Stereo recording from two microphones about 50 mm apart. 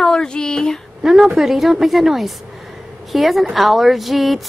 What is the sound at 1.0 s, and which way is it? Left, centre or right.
A woman's voice, centre.